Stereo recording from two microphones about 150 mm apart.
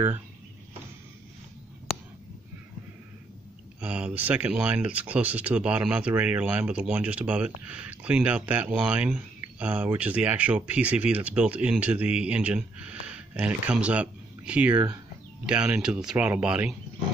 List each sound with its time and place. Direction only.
3.8 s speech: 10° right (ahead or behind)